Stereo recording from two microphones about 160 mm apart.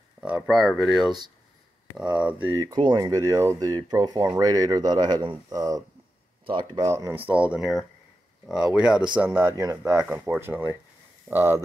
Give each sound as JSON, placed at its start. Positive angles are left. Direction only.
{"t": 0.2, "sound": "speech", "side_deg": -5}
{"t": 2.4, "sound": "speech", "side_deg": -20}
{"t": 6.9, "sound": "speech", "side_deg": -15}